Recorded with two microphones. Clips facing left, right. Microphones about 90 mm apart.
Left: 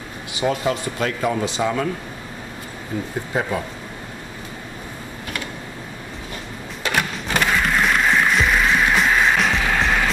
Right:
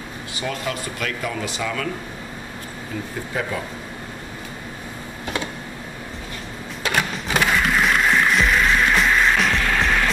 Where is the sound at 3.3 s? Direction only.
25° left (ahead or behind).